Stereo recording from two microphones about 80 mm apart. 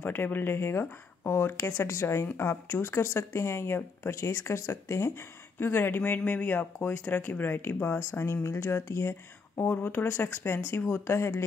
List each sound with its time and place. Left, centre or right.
0.0 s speech: left